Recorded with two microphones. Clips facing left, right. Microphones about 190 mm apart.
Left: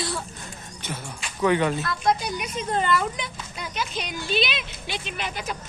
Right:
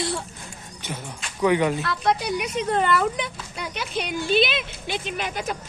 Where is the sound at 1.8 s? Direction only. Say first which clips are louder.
Right 1 dB; 70° right (ahead or behind).